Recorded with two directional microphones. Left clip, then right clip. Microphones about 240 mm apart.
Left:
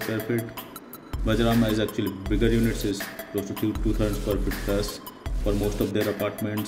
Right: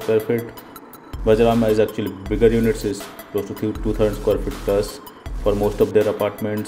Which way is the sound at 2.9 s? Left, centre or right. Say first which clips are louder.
Right 5 dB; centre.